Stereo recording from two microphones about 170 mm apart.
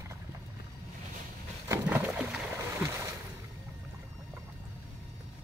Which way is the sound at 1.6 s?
15° right (ahead or behind).